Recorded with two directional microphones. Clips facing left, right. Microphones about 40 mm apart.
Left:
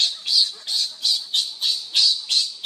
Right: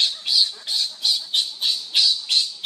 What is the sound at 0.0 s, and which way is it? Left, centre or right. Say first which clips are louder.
Squawk: right 1 dB; centre.